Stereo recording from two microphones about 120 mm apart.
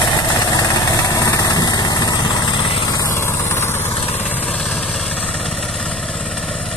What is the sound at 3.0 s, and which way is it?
Vehicle, 20° left (ahead or behind).